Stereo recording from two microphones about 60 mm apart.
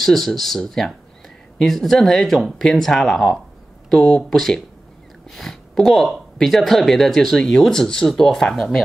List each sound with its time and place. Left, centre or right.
0.0 s speech: centre